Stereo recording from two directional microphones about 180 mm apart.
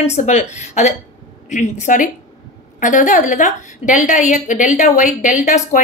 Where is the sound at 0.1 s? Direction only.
40° left (ahead or behind).